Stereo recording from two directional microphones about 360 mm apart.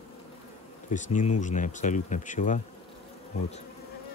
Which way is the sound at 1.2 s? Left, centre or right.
Centre.